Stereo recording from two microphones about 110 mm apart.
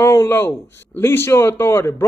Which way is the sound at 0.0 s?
25° left (ahead or behind).